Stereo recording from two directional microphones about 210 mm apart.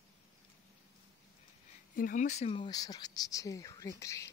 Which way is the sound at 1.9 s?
40° left (ahead or behind).